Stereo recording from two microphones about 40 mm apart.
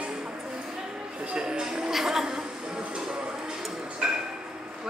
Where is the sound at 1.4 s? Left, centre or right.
Centre.